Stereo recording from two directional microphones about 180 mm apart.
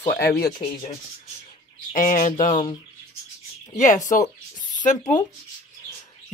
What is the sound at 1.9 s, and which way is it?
Speech, 45° left (ahead or behind).